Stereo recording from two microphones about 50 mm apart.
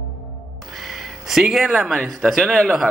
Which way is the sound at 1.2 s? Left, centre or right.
Centre.